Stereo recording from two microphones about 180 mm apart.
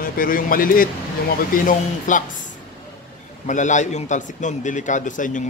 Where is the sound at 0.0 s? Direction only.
50° left (ahead or behind).